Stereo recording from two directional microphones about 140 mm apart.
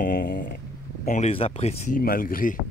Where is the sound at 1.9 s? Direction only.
85° left.